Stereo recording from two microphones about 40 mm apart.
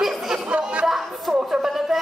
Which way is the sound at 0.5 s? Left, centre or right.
Right.